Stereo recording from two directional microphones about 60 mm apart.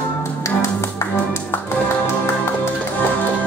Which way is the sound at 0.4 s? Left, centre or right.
Left.